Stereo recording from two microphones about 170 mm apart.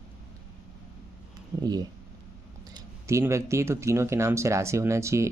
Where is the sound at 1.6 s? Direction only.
25° right (ahead or behind).